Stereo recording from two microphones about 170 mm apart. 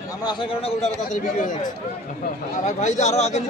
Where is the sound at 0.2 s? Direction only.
30° left (ahead or behind).